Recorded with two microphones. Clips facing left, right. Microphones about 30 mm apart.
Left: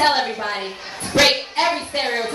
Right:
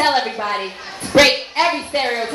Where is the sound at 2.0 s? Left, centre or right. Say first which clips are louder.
Right 2 dB; centre.